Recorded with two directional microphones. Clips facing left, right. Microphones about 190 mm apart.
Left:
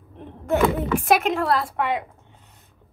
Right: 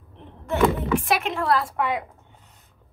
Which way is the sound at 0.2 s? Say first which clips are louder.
Left 1 dB; 45° left (ahead or behind).